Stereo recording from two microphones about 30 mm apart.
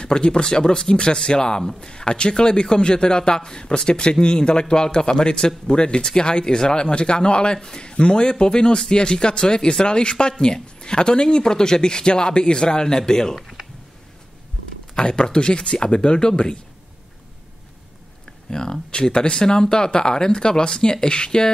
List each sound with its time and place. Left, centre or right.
0.0 s speech: left
7.9 s speech: left
15.0 s speech: left
18.5 s speech: left